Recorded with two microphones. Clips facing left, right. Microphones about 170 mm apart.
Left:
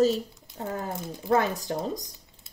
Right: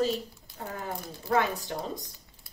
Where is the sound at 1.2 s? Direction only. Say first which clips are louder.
Left 3 dB; 40° left (ahead or behind).